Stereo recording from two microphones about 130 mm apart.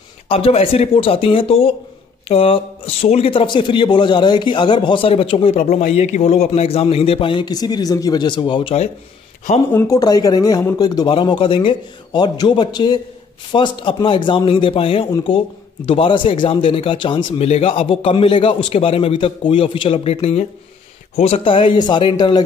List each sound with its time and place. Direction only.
0.3 s a man's voice: 50° left (ahead or behind)
9.8 s a man's voice: 25° left (ahead or behind)